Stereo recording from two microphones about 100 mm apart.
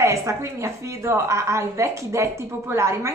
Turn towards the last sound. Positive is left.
turn(degrees=-30)  # may be behind; listen again after turning